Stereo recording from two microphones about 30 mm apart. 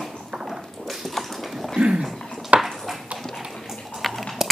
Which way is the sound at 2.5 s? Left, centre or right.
Right.